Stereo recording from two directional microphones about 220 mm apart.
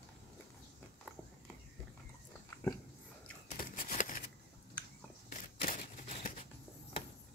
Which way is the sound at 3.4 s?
35° left (ahead or behind).